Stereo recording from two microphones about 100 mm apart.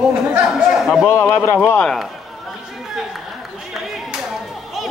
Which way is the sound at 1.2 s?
10° left (ahead or behind).